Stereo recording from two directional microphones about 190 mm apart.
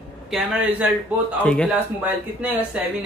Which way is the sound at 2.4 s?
10° right (ahead or behind).